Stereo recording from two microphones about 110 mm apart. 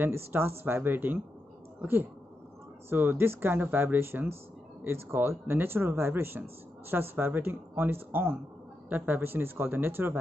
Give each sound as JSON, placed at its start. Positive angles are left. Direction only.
{"t": 0.0, "sound": "speech", "side_deg": -20}